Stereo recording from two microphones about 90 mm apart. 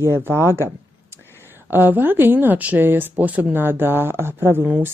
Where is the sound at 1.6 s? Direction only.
20° right (ahead or behind).